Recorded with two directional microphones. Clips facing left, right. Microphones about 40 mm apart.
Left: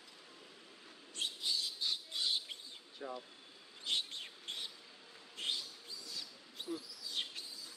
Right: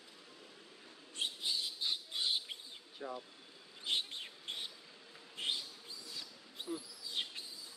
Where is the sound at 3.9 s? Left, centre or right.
Centre.